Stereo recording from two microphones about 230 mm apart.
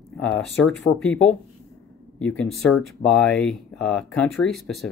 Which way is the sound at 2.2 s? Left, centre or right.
Left.